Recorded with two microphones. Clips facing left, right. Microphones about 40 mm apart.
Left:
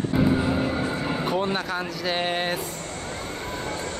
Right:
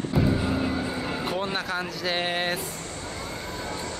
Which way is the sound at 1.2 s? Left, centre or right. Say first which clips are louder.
Left 4 dB; centre.